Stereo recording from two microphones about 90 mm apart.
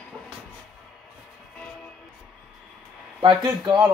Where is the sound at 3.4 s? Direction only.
50° right (ahead or behind).